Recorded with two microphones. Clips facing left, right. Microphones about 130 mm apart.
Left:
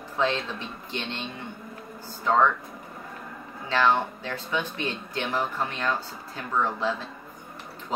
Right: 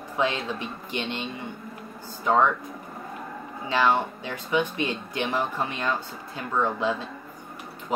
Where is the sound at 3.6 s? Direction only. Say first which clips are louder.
Even; 15° right (ahead or behind).